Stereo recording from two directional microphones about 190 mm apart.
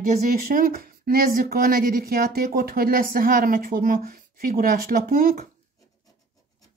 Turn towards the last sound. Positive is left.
turn(degrees=-45)  # may be behind; listen again after turning